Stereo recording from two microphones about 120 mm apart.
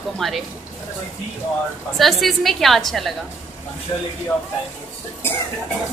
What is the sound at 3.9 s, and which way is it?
Speech, 30° left (ahead or behind).